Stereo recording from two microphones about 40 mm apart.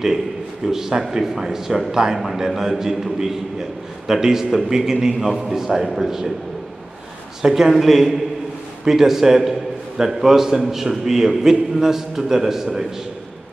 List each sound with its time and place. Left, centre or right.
0.7 s a man's voice: centre
7.4 s a man's voice: centre